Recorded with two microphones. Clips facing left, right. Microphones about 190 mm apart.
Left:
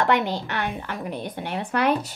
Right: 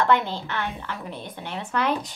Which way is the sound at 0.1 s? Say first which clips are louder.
Even; 15° left (ahead or behind).